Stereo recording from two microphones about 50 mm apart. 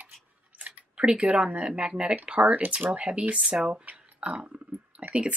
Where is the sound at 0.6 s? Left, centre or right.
Right.